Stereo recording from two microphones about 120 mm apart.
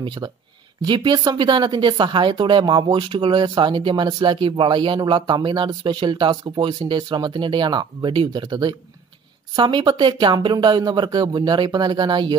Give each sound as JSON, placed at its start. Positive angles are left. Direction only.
{"t": 0.0, "sound": "speech", "side_deg": -40}